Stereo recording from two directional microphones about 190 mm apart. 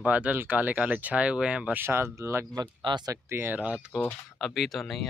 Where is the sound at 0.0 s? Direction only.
5° right (ahead or behind).